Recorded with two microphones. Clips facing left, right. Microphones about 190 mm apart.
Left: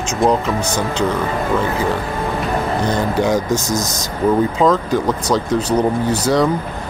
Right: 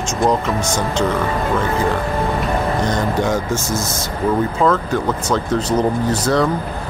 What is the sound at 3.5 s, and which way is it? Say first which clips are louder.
Speech: left 2 dB; 40° left (ahead or behind).